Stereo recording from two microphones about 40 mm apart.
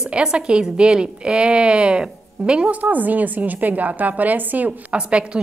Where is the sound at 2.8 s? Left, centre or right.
Right.